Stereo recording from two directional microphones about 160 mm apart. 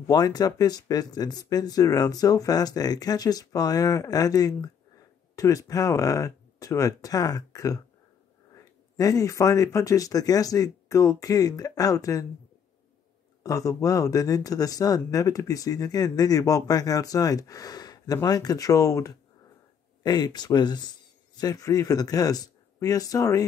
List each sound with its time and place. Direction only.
0.0 s speech: 25° left (ahead or behind)
13.4 s speech: 20° left (ahead or behind)